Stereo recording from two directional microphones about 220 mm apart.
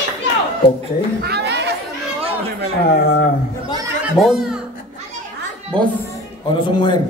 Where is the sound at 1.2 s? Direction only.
45° right (ahead or behind).